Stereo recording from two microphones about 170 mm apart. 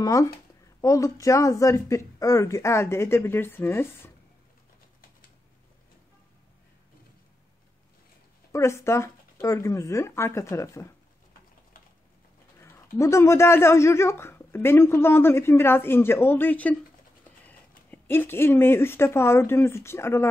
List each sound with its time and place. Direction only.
0.0 s speech: 20° left (ahead or behind)
8.5 s speech: 15° left (ahead or behind)
12.9 s speech: 15° left (ahead or behind)